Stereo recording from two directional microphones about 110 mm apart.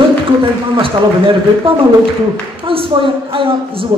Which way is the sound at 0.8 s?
55° right (ahead or behind).